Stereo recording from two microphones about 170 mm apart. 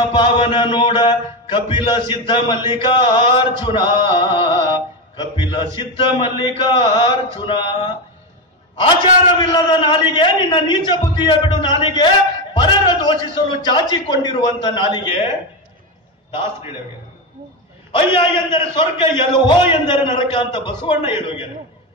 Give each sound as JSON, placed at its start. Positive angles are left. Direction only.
{"t": 0.1, "sound": "a man's voice", "side_deg": 30}
{"t": 9.4, "sound": "a man's voice", "side_deg": 25}
{"t": 17.9, "sound": "a man's voice", "side_deg": 30}